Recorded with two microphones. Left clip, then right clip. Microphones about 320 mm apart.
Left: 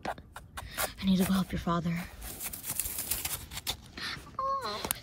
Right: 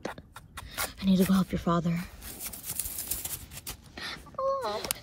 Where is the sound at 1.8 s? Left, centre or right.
Centre.